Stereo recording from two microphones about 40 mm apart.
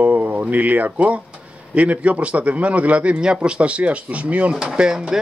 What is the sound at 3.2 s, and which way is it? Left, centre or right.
Speech, right.